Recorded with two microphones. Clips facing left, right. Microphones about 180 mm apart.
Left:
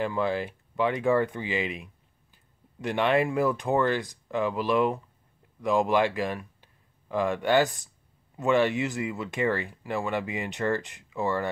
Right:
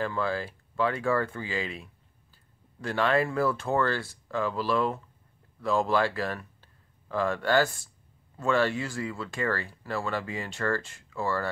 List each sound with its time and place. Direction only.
0.0 s speech: 20° left (ahead or behind)